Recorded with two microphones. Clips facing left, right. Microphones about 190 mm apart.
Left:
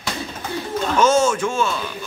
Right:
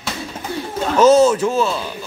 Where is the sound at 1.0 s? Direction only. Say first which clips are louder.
Right 6 dB; 35° right (ahead or behind).